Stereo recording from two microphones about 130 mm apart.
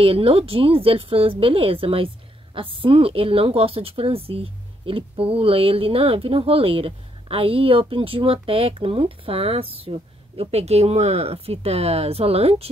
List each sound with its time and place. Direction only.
0.0 s a woman's voice: 45° right (ahead or behind)